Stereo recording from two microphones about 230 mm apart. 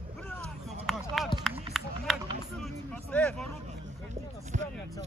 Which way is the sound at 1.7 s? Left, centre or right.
Centre.